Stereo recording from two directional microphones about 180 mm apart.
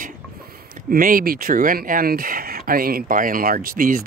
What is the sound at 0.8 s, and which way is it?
Speech, 50° right (ahead or behind).